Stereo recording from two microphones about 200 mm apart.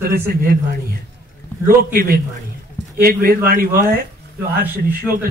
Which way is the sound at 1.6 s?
45° right (ahead or behind).